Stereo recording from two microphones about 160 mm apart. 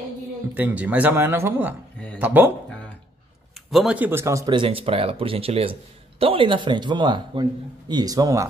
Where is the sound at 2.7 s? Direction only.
5° left (ahead or behind).